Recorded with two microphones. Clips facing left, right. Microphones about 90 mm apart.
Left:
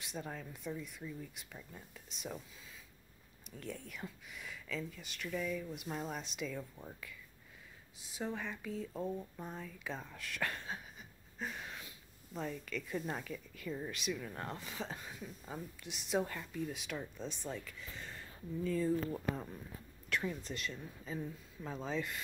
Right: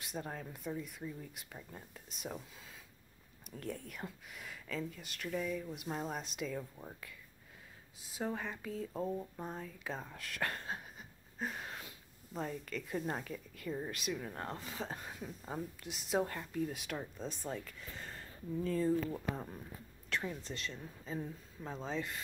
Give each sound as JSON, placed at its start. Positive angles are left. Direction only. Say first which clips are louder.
{"t": 0.0, "sound": "speech", "louder": "right 1 dB", "side_deg": -40}
{"t": 3.4, "sound": "speech", "louder": "right 3 dB", "side_deg": -45}
{"t": 8.0, "sound": "speech", "louder": "right 2 dB", "side_deg": -40}
{"t": 20.1, "sound": "a sound", "louder": "left 1 dB", "side_deg": -30}
{"t": 20.4, "sound": "speech", "louder": "left 1 dB", "side_deg": -30}